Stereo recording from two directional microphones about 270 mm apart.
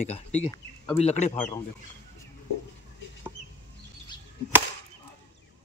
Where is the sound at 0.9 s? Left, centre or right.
Left.